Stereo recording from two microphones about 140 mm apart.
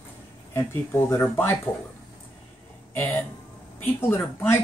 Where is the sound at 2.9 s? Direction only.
15° left (ahead or behind).